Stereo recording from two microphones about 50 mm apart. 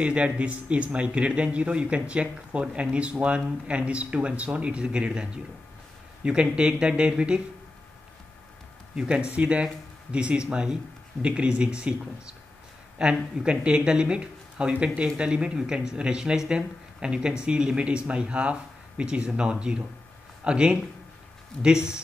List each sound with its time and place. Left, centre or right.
0.0 s speech: right
8.9 s speech: right
13.0 s speech: centre